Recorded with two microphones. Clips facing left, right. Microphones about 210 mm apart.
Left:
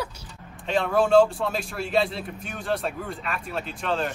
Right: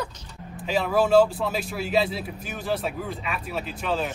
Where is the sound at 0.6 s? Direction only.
5° right (ahead or behind).